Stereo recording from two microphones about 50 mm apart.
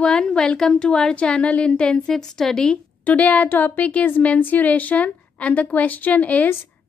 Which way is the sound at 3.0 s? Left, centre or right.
Left.